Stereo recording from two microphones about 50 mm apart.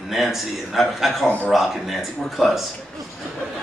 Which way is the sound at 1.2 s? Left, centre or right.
Left.